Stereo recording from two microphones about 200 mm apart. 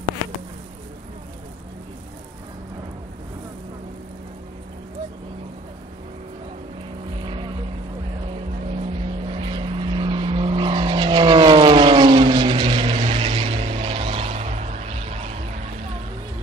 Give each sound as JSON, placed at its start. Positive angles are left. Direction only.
{"t": 7.2, "sound": "vehicle", "side_deg": -25}